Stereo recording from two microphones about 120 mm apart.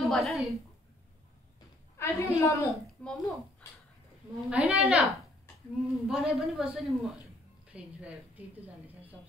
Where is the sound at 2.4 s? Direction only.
25° left (ahead or behind).